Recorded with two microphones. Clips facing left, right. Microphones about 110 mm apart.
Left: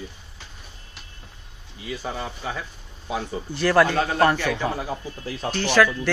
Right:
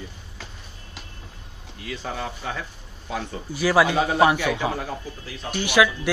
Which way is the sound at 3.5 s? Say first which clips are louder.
Even; 5° right (ahead or behind).